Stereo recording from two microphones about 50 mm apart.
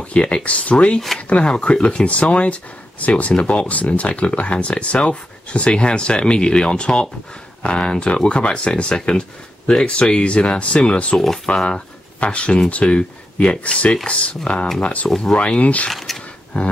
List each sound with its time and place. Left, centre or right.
0.0 s speech: left
11.1 s speech: centre; by 15.0 s left
15.0 s speech: centre
15.3 s speech: left
15.9 s speech: centre
16.5 s speech: left